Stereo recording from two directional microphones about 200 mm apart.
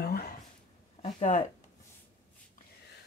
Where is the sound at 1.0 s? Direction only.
35° left (ahead or behind).